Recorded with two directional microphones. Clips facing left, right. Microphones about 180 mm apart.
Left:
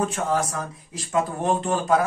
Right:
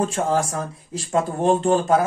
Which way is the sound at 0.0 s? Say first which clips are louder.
Right 3 dB; 30° right (ahead or behind).